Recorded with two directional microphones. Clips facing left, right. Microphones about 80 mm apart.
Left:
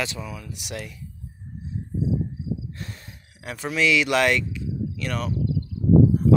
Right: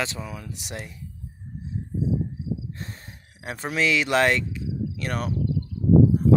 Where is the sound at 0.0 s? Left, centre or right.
Right.